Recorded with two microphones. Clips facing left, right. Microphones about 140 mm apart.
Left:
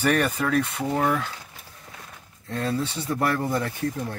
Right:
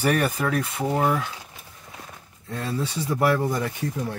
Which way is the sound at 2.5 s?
5° right (ahead or behind).